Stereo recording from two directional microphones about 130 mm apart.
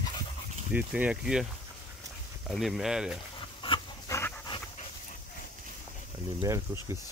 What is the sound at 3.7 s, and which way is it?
Dog, 45° left (ahead or behind).